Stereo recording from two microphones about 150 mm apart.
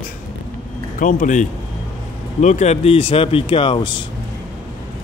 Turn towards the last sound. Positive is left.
turn(degrees=35)  # may be behind; listen again after turning